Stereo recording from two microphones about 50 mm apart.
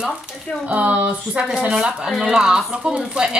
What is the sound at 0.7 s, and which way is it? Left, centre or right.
Speech, right.